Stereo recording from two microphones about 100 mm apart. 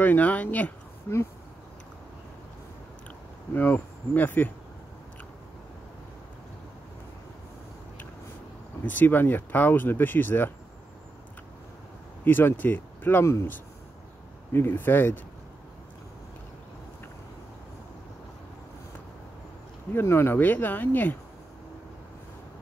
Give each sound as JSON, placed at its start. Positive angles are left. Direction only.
{"t": 0.0, "sound": "speech", "side_deg": 15}
{"t": 3.5, "sound": "speech", "side_deg": 20}
{"t": 8.8, "sound": "speech", "side_deg": 20}
{"t": 12.3, "sound": "speech", "side_deg": 20}
{"t": 19.9, "sound": "speech", "side_deg": 20}